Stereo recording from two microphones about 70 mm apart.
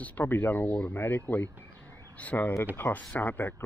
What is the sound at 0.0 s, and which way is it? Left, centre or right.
Speech, left.